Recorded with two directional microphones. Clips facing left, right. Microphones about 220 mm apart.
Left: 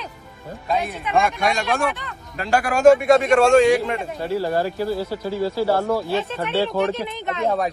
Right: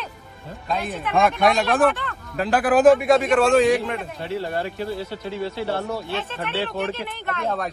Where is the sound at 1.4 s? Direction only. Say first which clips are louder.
Right 3 dB; centre (ahead or behind).